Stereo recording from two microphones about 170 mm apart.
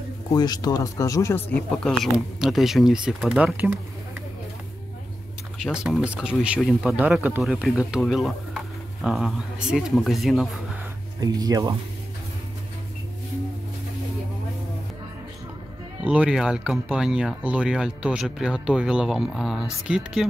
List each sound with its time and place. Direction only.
0.3 s speech: 25° left (ahead or behind); by 3.7 s 10° right (ahead or behind)
5.6 s speech: 5° right (ahead or behind)
11.1 s speech: 20° right (ahead or behind)
16.1 s speech: 5° right (ahead or behind)